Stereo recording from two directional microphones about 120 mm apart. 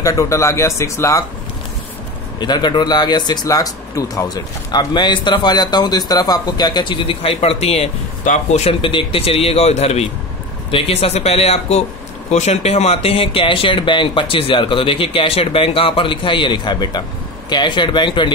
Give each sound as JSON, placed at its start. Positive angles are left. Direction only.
{"t": 0.0, "sound": "speech", "side_deg": 25}
{"t": 2.4, "sound": "speech", "side_deg": 40}
{"t": 8.8, "sound": "speech", "side_deg": 50}